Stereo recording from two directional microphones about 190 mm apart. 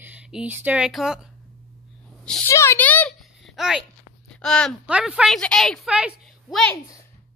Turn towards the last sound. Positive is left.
turn(degrees=0)  # may be behind; listen again after turning